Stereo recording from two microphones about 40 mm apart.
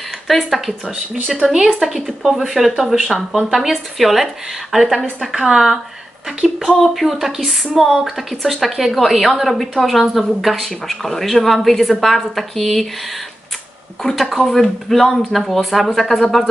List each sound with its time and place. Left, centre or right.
0.3 s speech: centre
1.8 s speech: centre
5.3 s a woman's voice: centre
6.8 s speech: centre
14.0 s speech: centre